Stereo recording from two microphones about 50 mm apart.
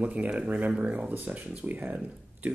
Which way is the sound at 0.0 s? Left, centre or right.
Right.